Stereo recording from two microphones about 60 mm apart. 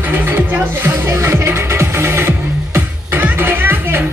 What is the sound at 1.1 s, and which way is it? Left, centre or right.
Music, right.